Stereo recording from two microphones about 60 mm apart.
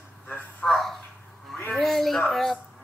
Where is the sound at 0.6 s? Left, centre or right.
Centre.